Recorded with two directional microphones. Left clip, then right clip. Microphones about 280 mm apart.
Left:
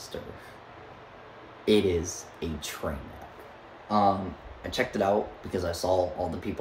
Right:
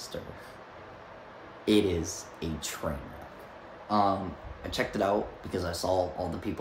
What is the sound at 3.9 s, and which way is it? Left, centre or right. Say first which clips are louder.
Speech: left 2 dB; centre.